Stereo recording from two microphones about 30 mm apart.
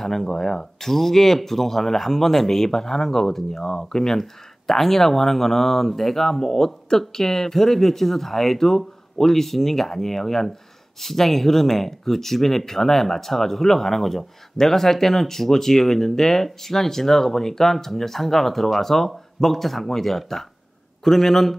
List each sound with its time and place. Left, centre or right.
0.0 s speech: centre